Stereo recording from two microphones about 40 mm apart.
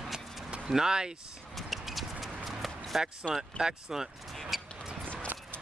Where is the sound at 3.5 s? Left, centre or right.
Centre.